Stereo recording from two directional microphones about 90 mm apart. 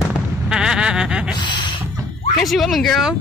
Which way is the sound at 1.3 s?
60° left (ahead or behind).